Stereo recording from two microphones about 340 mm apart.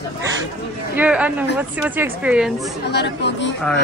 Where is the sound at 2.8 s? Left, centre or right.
Left.